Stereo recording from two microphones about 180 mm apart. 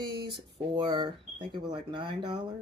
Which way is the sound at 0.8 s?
25° right (ahead or behind).